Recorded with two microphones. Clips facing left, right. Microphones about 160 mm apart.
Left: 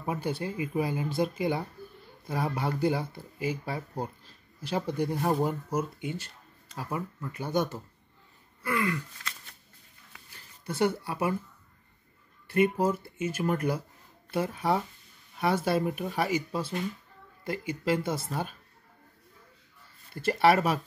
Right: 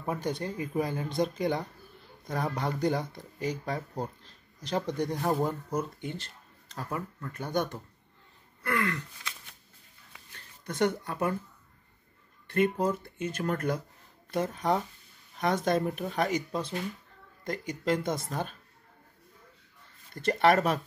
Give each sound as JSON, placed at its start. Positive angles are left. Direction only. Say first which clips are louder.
{"t": 0.0, "sound": "speech", "louder": "even", "side_deg": 5}
{"t": 8.6, "sound": "speech", "louder": "left 1 dB", "side_deg": 10}
{"t": 10.6, "sound": "speech", "louder": "left 1 dB", "side_deg": 10}
{"t": 12.4, "sound": "speech", "louder": "left 2 dB", "side_deg": 10}
{"t": 20.2, "sound": "speech", "louder": "left 1 dB", "side_deg": 5}